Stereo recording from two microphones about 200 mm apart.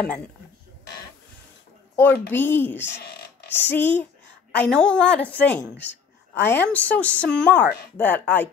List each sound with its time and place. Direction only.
2.0 s a woman's voice: 10° left (ahead or behind)
2.9 s speech: 55° left (ahead or behind)
3.4 s a woman's voice: 10° left (ahead or behind)